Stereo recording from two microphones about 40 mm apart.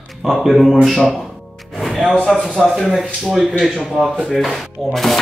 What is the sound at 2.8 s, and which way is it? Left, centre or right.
Speech, centre.